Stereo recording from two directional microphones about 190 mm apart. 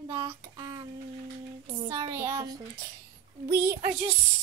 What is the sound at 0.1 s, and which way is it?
Child singing, 25° right (ahead or behind).